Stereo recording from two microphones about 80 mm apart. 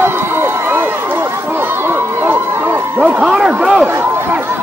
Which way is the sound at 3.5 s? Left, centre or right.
Centre.